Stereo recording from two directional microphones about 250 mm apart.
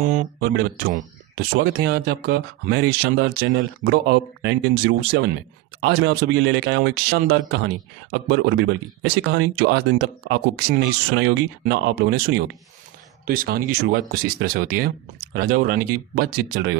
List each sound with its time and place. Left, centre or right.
0.0 s speech: right